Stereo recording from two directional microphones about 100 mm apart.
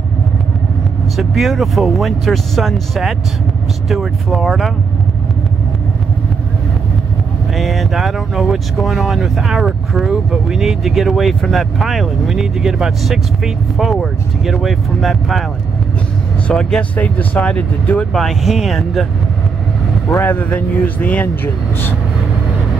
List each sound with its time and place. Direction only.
1.1 s speech: centre (ahead or behind)
7.5 s speech: centre (ahead or behind)
16.4 s speech: 10° left (ahead or behind)
18.2 s speech: centre (ahead or behind)
20.1 s speech: 25° left (ahead or behind)
20.3 s speech: 15° left (ahead or behind)